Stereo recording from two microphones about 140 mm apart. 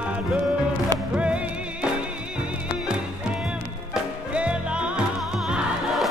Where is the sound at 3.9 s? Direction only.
5° right (ahead or behind).